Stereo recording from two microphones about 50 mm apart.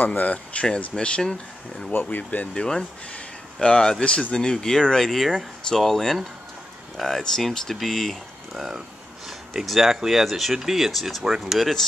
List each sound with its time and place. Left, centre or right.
0.0 s speech: left; by 1.3 s centre
1.9 s speech: left
2.5 s speech: centre